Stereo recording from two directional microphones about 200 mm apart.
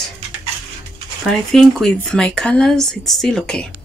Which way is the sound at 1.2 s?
Centre (ahead or behind).